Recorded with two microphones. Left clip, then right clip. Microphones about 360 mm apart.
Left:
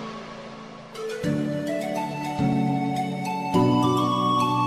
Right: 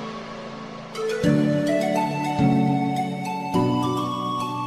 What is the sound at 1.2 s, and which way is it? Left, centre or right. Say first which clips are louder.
Music: right 6 dB; right.